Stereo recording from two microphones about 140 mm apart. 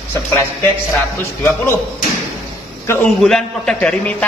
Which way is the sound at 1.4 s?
20° left (ahead or behind).